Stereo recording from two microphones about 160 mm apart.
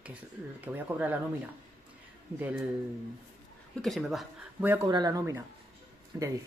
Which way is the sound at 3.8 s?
Centre (ahead or behind).